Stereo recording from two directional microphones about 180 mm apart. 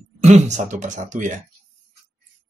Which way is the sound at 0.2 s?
40° right (ahead or behind).